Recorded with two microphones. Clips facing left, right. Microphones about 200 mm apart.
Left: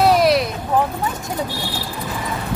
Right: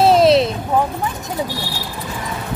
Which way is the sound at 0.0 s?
25° right (ahead or behind).